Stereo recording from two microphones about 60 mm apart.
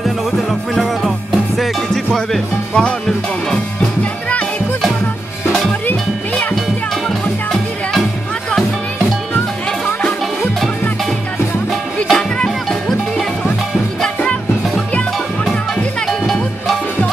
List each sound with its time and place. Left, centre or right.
0.0 s music: centre
2.1 s music: centre
12.1 s music: centre
16.1 s music: centre